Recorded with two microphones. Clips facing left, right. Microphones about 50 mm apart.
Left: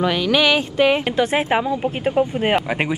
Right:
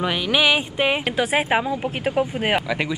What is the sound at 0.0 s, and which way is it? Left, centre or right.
A woman's voice, centre.